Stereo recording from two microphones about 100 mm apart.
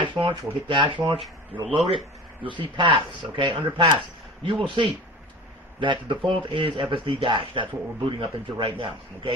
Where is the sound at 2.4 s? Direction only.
55° right (ahead or behind).